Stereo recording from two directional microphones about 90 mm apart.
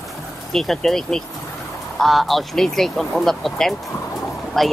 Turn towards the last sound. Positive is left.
turn(degrees=0)  # may be behind; listen again after turning